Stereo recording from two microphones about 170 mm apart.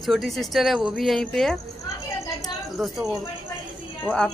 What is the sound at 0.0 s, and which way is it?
A man's voice, centre (ahead or behind).